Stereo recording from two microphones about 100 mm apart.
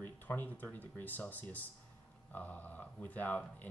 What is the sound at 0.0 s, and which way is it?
Speech, 20° left (ahead or behind).